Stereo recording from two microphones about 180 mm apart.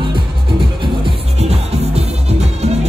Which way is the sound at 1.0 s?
35° right (ahead or behind).